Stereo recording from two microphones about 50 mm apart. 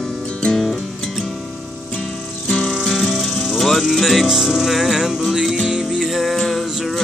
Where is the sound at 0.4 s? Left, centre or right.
Centre.